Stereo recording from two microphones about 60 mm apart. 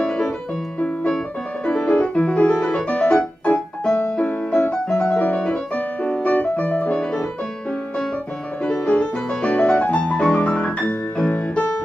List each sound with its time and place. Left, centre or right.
0.0 s keyboard: centre
0.7 s music: centre
5.1 s piano: left
8.6 s music: centre
10.5 s piano: centre
10.9 s music: left